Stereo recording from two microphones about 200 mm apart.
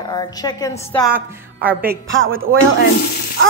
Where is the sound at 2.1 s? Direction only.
80° right.